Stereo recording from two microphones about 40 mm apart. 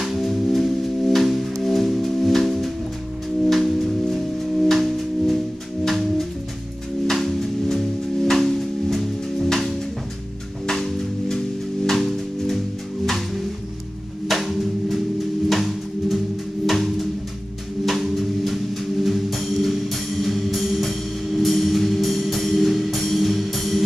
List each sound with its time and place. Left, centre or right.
0.0 s music: centre
10.7 s music: centre
14.2 s a sound: centre
16.6 s music: centre